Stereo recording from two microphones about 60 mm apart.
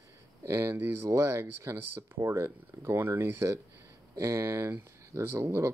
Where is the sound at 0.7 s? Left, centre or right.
Right.